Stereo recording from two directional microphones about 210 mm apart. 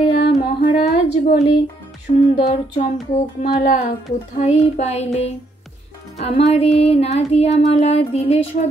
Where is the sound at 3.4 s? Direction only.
40° left (ahead or behind).